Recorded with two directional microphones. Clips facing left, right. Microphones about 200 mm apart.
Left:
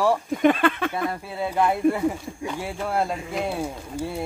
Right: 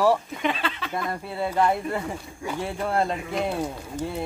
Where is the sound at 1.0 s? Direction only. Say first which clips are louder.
Left 1 dB; 5° left (ahead or behind).